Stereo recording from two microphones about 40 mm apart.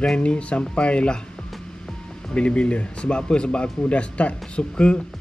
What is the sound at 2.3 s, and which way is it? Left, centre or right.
Speech, left.